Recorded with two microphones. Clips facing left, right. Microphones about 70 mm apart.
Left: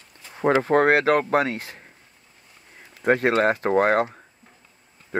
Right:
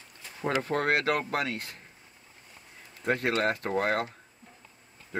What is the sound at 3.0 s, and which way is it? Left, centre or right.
Speech, left.